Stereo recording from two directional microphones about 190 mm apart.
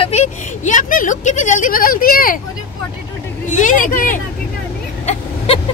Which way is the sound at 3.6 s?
45° left (ahead or behind).